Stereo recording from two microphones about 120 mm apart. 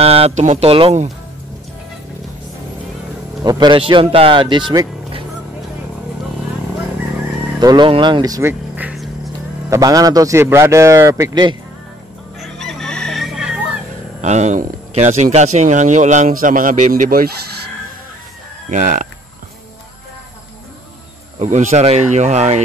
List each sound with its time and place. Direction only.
0.0 s speech: 55° right (ahead or behind)
3.4 s speech: 35° right (ahead or behind)
7.6 s speech: 40° right (ahead or behind); by 8.9 s 20° right (ahead or behind)
9.7 s a man's voice: 30° right (ahead or behind)
12.4 s chicken: 5° left (ahead or behind)
14.2 s a man's voice: 75° right (ahead or behind)
18.7 s speech: 90° right
21.4 s speech: 90° right; by 22.6 s 70° right (ahead or behind)